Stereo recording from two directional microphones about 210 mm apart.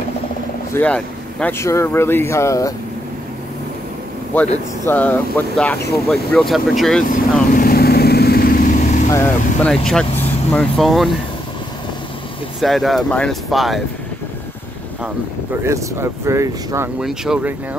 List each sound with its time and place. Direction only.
0.7 s speech: 5° left (ahead or behind)
4.8 s speech: 10° left (ahead or behind)
7.4 s vehicle: 40° left (ahead or behind)
9.1 s speech: 10° left (ahead or behind)
12.5 s speech: centre (ahead or behind)
15.6 s speech: 15° right (ahead or behind)
17.0 s speech: centre (ahead or behind)